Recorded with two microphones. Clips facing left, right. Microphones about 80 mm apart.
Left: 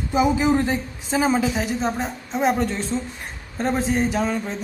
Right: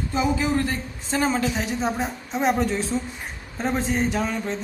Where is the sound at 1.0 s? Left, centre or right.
Centre.